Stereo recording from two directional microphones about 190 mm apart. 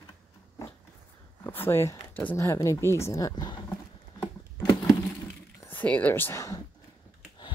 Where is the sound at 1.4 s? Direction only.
10° left (ahead or behind).